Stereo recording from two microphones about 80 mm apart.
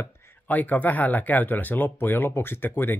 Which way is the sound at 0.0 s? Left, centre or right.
Left.